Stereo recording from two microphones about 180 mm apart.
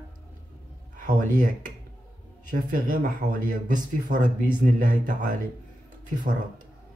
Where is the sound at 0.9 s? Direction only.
45° right (ahead or behind).